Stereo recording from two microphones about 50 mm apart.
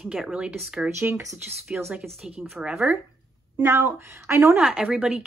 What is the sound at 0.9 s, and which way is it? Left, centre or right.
Speech, right.